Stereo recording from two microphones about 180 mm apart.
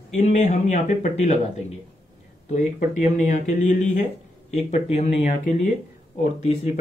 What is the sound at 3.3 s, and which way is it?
A man's voice, 45° left (ahead or behind).